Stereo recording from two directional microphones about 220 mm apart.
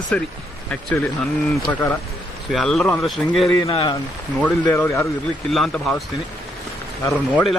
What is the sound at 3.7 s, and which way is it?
Speech, 25° left (ahead or behind).